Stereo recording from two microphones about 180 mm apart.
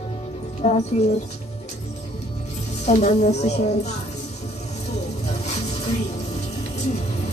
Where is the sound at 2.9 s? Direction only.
40° left (ahead or behind).